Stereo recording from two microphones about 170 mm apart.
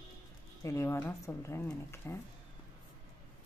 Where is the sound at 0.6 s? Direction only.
15° left (ahead or behind).